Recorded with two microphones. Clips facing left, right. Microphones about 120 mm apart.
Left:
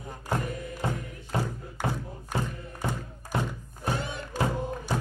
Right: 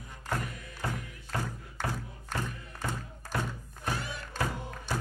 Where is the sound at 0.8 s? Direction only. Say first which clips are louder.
Left 3 dB; 20° left (ahead or behind).